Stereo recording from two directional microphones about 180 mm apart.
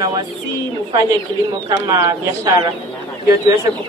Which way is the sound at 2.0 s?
20° right (ahead or behind).